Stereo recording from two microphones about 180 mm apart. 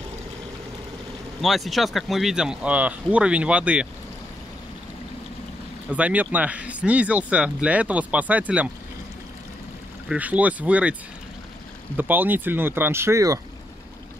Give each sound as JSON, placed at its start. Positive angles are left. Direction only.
{"t": 1.4, "sound": "speech", "side_deg": 0}
{"t": 5.9, "sound": "speech", "side_deg": -5}
{"t": 10.0, "sound": "speech", "side_deg": -10}
{"t": 12.0, "sound": "speech", "side_deg": -10}